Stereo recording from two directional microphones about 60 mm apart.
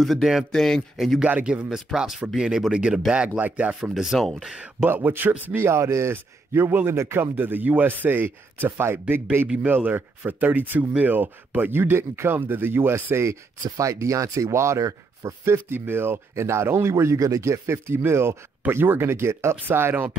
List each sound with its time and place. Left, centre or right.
0.0 s speech: centre
0.5 s speech: centre
1.2 s a man's voice: centre
3.3 s a man's voice: right
3.9 s speech: centre
4.8 s speech: right
5.7 s speech: right
6.5 s speech: right
12.9 s speech: right
14.8 s speech: right
15.4 s speech: right